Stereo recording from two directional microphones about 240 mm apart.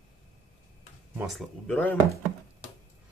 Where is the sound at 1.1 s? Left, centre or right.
Centre.